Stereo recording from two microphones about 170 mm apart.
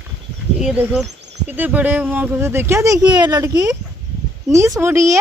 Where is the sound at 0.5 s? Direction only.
5° right (ahead or behind).